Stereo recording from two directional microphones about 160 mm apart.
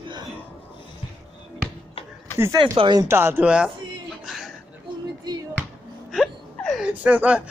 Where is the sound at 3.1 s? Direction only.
15° right (ahead or behind).